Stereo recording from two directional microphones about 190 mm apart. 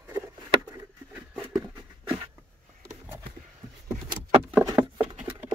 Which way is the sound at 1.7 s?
25° right (ahead or behind).